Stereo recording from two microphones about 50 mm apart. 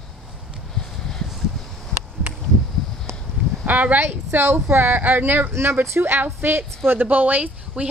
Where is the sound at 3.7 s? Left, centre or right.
Right.